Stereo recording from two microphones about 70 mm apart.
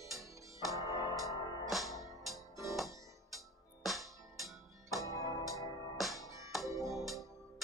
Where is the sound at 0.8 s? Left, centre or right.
Left.